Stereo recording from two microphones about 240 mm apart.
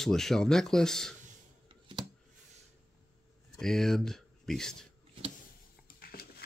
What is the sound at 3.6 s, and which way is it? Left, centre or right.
Speech, centre.